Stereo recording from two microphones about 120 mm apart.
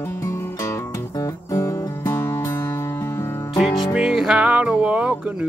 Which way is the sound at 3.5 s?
Centre (ahead or behind).